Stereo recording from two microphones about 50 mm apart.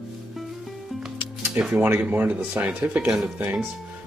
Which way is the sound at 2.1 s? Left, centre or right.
Right.